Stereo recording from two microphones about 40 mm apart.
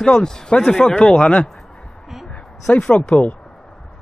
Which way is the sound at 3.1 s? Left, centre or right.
Left.